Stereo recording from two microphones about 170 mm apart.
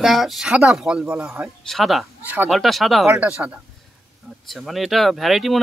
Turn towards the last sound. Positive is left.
turn(degrees=0)  # may be behind; listen again after turning